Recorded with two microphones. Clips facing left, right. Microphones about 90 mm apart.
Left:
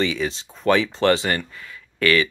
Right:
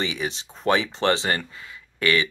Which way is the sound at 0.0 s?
20° right (ahead or behind).